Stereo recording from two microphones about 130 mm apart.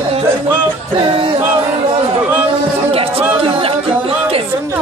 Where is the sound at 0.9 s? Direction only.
45° right (ahead or behind).